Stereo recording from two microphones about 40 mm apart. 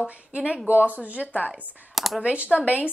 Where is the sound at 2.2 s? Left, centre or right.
Right.